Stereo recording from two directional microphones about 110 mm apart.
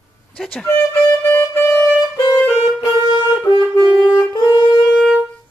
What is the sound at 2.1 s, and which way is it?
Saxophone, 40° left (ahead or behind).